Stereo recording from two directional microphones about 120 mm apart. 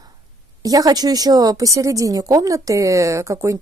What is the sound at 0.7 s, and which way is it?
A woman's voice, 30° right (ahead or behind).